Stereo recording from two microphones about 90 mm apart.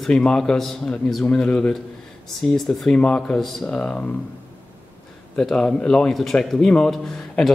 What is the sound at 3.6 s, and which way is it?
Speech, 10° left (ahead or behind).